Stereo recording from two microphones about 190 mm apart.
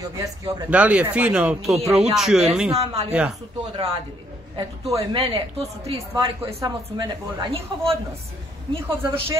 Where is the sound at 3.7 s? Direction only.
20° right (ahead or behind).